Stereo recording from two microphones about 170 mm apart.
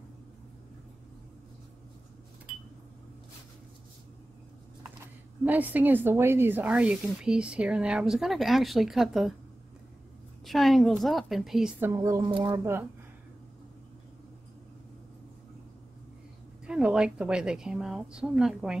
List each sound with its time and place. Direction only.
5.4 s speech: 10° right (ahead or behind)
10.4 s a woman's voice: centre (ahead or behind)
11.8 s speech: 15° right (ahead or behind)
12.2 s speech: 30° right (ahead or behind)
12.4 s speech: 15° right (ahead or behind)
16.6 s a woman's voice: 5° right (ahead or behind)